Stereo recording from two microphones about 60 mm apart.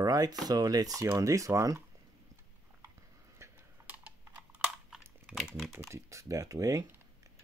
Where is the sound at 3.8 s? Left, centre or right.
Right.